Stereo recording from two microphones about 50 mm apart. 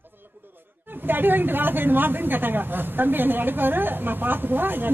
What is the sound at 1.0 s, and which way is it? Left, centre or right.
A man's voice, right.